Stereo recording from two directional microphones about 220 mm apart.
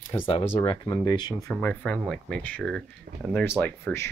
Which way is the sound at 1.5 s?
5° left (ahead or behind).